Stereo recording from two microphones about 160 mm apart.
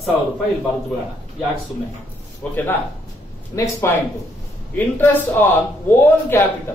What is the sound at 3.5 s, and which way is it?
A man's voice, 20° left (ahead or behind).